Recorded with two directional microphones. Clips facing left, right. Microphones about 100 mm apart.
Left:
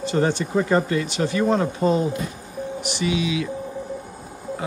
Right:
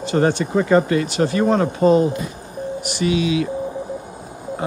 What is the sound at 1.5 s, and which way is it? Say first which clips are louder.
Speech: right 7 dB; 65° right (ahead or behind).